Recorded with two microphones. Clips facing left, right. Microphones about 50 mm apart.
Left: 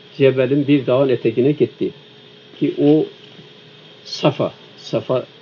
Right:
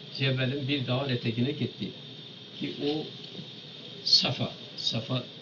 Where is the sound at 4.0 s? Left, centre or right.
Left.